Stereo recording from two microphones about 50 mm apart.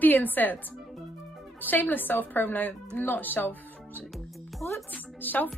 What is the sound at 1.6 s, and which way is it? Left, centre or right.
A woman's voice, left.